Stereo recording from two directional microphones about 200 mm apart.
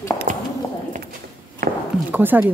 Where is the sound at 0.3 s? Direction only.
40° right (ahead or behind).